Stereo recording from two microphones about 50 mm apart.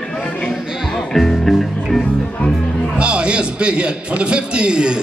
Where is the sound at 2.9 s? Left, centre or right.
Right.